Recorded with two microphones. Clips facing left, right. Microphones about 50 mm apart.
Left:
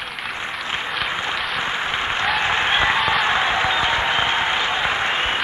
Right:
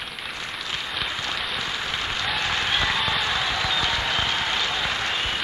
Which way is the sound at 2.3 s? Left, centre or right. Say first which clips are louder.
Left 5 dB; left.